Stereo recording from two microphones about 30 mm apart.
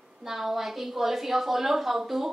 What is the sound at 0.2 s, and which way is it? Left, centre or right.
A woman's voice, centre.